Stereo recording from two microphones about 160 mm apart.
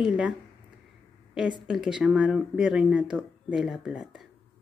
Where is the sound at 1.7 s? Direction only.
5° right (ahead or behind).